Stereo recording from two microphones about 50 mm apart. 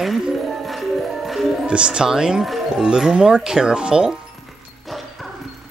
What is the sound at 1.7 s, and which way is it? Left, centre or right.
Speech, centre.